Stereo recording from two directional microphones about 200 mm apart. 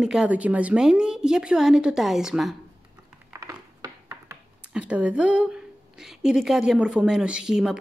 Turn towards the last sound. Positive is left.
turn(degrees=-5)  # may be behind; listen again after turning